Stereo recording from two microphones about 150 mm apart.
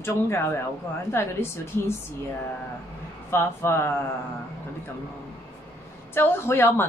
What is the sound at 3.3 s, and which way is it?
Speech, 15° left (ahead or behind).